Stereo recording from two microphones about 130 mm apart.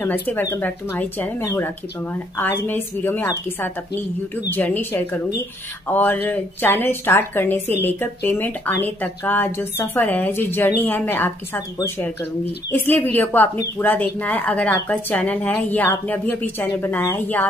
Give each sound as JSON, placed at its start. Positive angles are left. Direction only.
{"t": 0.0, "sound": "speech", "side_deg": 15}